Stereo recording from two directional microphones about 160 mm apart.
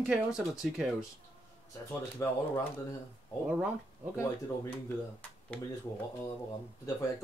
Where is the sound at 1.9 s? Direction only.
20° left (ahead or behind).